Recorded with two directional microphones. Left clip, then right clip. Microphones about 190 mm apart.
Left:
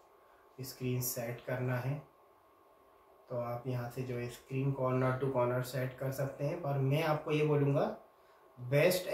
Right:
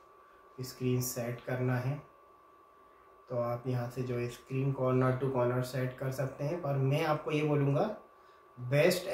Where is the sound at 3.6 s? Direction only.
20° right (ahead or behind).